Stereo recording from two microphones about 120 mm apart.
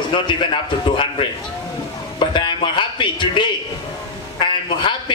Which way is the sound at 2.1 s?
45° left (ahead or behind).